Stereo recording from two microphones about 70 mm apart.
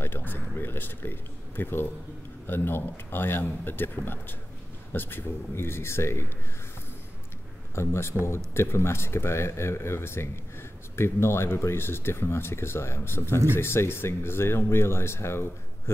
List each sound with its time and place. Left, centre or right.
0.0 s speech: left
7.7 s speech: left